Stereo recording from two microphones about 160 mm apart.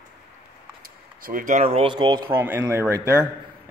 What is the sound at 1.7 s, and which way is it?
Speech, 35° right (ahead or behind).